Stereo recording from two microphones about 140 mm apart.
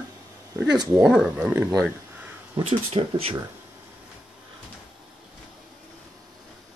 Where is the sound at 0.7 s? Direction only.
30° right (ahead or behind).